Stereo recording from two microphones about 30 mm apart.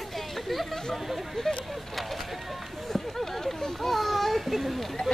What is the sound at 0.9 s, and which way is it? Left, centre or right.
Speech, centre.